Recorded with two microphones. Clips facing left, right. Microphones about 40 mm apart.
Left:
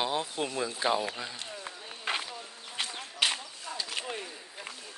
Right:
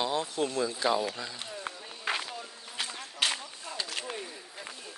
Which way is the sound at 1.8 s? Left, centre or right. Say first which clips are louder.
Even; centre.